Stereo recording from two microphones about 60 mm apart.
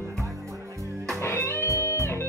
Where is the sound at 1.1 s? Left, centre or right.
Left.